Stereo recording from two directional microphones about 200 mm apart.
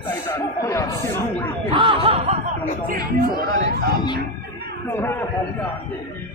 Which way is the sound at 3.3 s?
20° left (ahead or behind).